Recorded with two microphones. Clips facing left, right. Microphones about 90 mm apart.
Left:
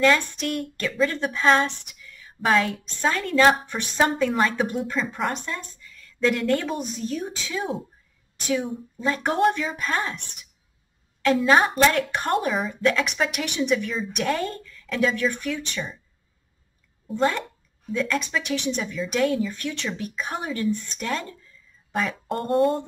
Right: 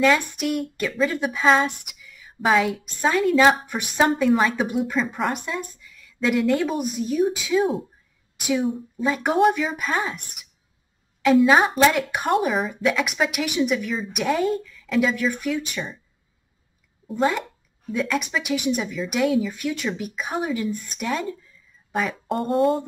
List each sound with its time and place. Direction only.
0.0 s speech: 10° right (ahead or behind)
17.1 s speech: 5° right (ahead or behind)